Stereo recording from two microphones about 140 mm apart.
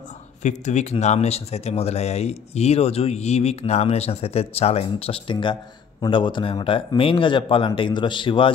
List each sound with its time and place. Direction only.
0.4 s speech: 55° left (ahead or behind); by 8.5 s 35° left (ahead or behind)